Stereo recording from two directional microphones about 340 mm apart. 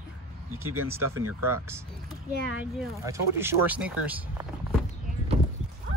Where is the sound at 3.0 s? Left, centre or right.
Centre.